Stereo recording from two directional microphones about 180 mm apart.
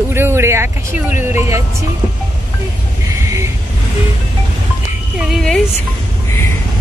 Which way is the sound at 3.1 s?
15° right (ahead or behind).